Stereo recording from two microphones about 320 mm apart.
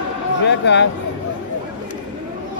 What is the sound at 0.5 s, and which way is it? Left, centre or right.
Speech, left.